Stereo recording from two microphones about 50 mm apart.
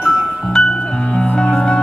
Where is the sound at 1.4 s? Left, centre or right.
Centre.